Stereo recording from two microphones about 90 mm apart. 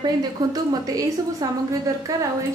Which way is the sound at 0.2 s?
45° right (ahead or behind).